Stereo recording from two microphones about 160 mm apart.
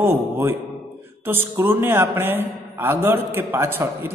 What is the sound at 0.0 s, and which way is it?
A man's voice, 15° right (ahead or behind).